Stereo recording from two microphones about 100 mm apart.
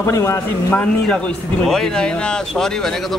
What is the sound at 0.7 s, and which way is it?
A man's voice, 10° left (ahead or behind).